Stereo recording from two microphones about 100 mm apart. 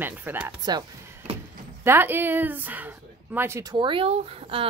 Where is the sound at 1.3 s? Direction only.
70° right (ahead or behind).